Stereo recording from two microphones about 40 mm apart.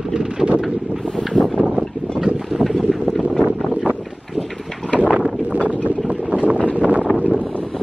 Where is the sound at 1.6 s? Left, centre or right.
Right.